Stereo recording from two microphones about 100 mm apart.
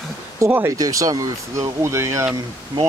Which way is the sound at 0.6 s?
35° right (ahead or behind).